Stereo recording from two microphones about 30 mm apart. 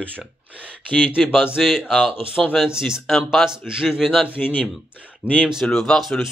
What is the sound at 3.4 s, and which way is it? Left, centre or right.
Speech, centre.